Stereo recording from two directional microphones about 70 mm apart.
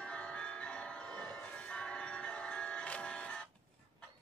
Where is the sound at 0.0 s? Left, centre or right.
Centre.